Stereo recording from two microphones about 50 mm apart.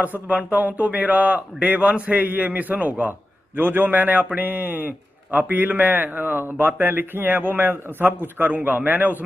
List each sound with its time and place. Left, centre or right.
0.0 s a man's voice: right